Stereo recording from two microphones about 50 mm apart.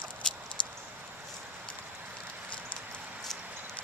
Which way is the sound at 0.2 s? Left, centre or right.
Centre.